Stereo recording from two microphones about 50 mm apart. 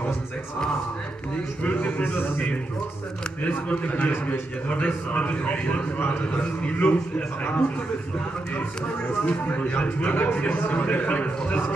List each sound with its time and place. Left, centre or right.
1.6 s a man's voice: left
2.1 s a man's voice: left
3.4 s a man's voice: left
9.2 s a man's voice: left